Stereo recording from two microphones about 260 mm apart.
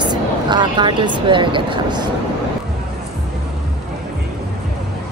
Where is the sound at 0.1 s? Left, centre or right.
Centre.